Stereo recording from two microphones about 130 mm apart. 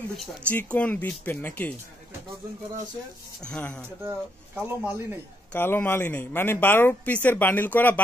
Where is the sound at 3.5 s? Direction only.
5° left (ahead or behind).